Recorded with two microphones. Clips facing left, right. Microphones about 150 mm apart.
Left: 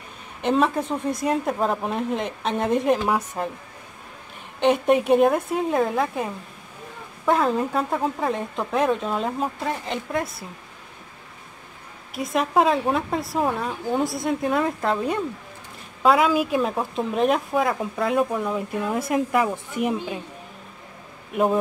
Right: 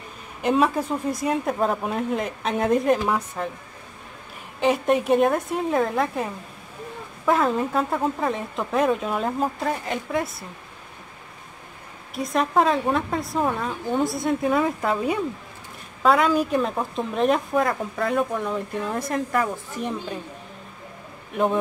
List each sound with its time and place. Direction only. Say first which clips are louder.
0.4 s speech: even; 5° right (ahead or behind)
4.6 s speech: left 2 dB; centre (ahead or behind)
12.1 s speech: even; centre (ahead or behind)